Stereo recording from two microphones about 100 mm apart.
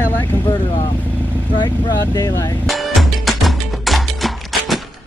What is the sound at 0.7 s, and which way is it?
Vehicle, 45° left (ahead or behind).